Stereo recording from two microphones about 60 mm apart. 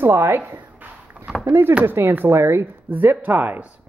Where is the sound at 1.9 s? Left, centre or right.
Right.